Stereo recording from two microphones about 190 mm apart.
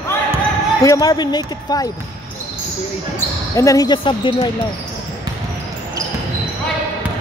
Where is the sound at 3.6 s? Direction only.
20° left (ahead or behind).